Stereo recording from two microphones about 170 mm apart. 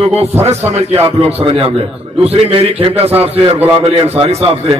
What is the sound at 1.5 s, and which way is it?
A man's voice, 35° right (ahead or behind).